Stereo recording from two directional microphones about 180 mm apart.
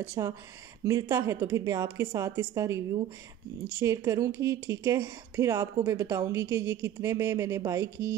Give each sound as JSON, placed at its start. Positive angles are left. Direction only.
{"t": 0.0, "sound": "speech", "side_deg": -15}